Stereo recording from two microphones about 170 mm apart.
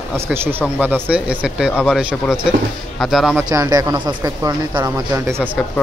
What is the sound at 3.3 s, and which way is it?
Speech, 20° right (ahead or behind).